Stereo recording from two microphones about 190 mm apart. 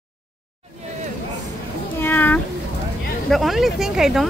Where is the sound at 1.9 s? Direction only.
10° left (ahead or behind).